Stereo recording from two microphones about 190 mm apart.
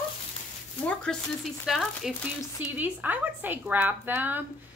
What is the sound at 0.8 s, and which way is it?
A woman's voice, centre (ahead or behind).